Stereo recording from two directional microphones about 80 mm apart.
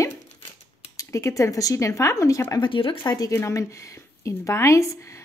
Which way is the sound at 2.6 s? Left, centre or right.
Left.